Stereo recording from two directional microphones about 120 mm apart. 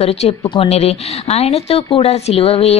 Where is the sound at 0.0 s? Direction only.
60° left (ahead or behind).